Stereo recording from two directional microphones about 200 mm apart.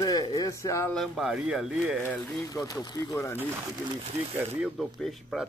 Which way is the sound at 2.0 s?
15° left (ahead or behind).